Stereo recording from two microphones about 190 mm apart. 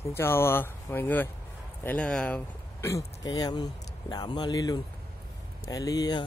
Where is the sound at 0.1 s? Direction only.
10° left (ahead or behind).